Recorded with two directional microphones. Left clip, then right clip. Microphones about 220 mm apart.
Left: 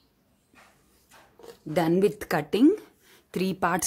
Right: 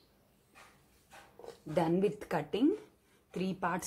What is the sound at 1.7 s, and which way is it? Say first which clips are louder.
Speech: left 8 dB; 50° left (ahead or behind).